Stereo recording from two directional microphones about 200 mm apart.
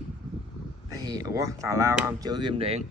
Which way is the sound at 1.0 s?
20° right (ahead or behind).